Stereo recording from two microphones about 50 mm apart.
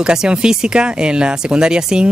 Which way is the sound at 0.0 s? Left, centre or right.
Centre.